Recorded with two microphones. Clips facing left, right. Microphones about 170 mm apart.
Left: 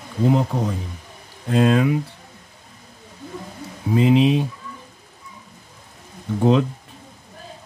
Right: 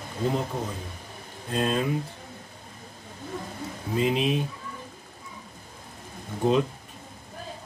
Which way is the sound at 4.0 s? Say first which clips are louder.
Left 8 dB; 85° left.